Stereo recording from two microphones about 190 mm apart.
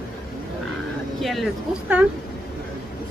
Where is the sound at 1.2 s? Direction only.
Centre (ahead or behind).